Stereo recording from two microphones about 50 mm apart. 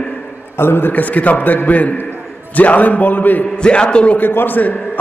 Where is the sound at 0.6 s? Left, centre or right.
Left.